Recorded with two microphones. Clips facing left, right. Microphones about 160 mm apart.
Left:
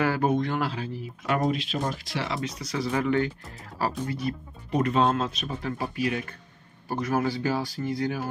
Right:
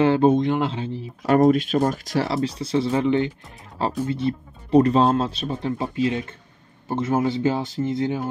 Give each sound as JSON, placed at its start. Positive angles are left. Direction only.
{"t": 0.0, "sound": "speech", "side_deg": -25}
{"t": 1.2, "sound": "speech", "side_deg": -45}